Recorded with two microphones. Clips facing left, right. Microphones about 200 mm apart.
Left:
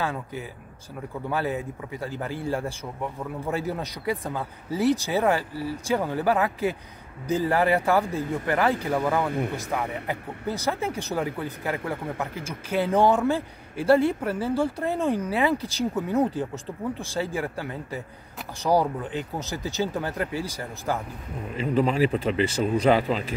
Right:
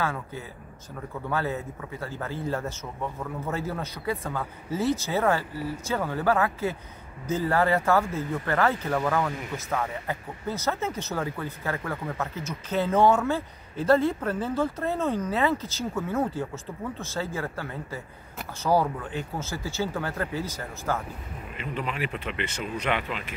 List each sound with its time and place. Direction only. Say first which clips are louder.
0.0 s speech: left 1 dB; 15° left (ahead or behind)
9.3 s speech: left 6 dB; 60° left (ahead or behind)
10.0 s speech: left 2 dB; 15° left (ahead or behind)
21.5 s speech: left 10 dB; 35° left (ahead or behind)